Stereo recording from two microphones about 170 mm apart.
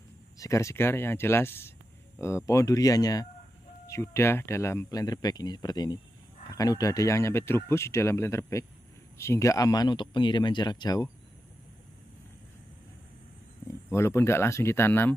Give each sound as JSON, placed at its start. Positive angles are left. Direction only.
{"t": 0.4, "sound": "speech", "side_deg": 20}
{"t": 13.7, "sound": "speech", "side_deg": 15}